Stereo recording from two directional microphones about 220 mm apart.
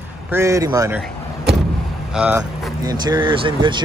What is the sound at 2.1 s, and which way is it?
Speech, 5° right (ahead or behind).